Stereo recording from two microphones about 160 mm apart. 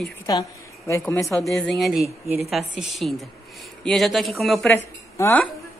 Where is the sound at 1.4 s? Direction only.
5° left (ahead or behind).